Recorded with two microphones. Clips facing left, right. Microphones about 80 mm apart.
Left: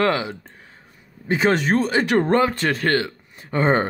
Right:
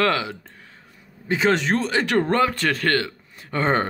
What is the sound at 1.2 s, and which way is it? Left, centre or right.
Speech, left.